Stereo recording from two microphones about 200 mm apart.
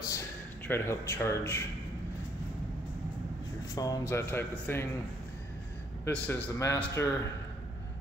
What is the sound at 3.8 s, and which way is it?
Speech, 15° left (ahead or behind).